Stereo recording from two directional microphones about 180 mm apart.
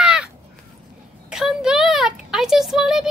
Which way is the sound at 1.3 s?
5° right (ahead or behind).